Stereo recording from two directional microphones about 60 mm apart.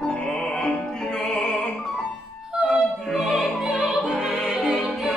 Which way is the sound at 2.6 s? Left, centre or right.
Centre.